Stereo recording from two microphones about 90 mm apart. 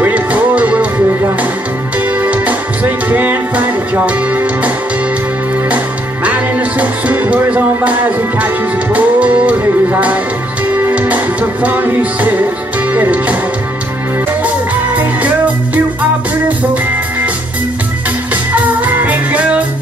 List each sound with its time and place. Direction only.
0.0 s music: 15° right (ahead or behind)
2.0 s music: 20° right (ahead or behind)
6.2 s music: 15° right (ahead or behind)
15.0 s music: 15° right (ahead or behind)
18.3 s music: 20° right (ahead or behind)